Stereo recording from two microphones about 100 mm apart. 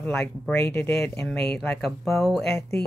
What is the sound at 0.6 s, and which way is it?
Music, 25° left (ahead or behind).